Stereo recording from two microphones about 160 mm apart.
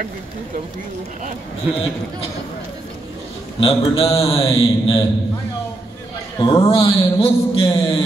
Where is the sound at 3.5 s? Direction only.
35° left (ahead or behind).